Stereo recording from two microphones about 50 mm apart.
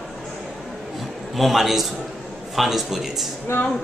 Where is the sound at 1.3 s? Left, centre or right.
Centre.